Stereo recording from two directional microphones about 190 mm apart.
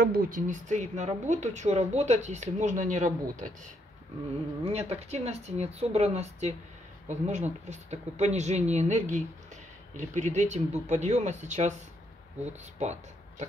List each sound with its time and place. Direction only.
0.0 s speech: 50° right (ahead or behind)
4.7 s speech: 35° right (ahead or behind)